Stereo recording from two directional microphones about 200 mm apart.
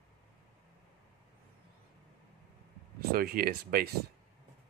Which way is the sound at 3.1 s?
45° right (ahead or behind).